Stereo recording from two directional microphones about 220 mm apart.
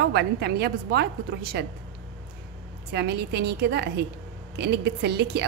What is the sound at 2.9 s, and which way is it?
A woman's voice, 50° right (ahead or behind).